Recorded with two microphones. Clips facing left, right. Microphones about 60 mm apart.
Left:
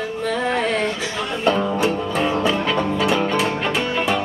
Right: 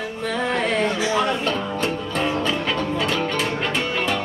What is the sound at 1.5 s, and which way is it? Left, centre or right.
Music, centre.